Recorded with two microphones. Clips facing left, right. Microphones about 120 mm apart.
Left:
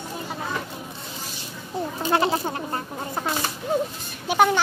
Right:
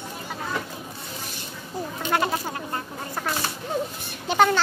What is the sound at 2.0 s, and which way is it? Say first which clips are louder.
Bleat: left 3 dB; 30° left (ahead or behind).